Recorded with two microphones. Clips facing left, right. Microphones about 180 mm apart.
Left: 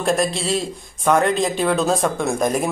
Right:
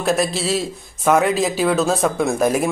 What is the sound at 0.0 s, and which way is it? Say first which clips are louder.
Speech: right 1 dB; centre (ahead or behind).